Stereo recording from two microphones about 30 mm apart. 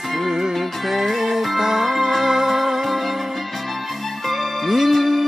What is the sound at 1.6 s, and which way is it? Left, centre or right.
Music, centre.